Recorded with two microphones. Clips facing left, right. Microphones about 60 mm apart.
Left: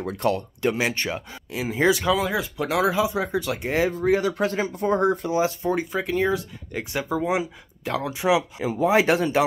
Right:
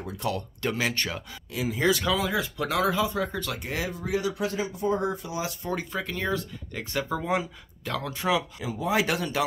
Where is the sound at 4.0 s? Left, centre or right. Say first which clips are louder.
Left 7 dB; left.